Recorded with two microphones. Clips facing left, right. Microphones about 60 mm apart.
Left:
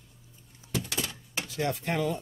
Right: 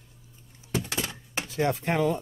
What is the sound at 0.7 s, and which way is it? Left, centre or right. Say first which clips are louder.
Door: right 2 dB; right.